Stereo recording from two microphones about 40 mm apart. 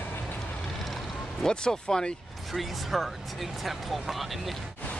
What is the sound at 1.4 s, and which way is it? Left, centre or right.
Speech, centre.